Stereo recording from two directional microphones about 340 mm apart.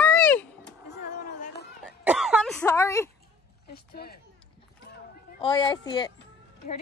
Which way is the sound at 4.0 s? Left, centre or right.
Left.